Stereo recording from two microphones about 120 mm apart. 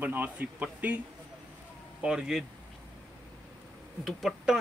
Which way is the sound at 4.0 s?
Centre (ahead or behind).